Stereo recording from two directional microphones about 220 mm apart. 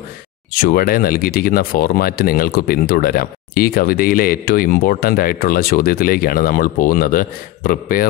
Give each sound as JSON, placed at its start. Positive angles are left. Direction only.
{"t": 0.5, "sound": "speech", "side_deg": 40}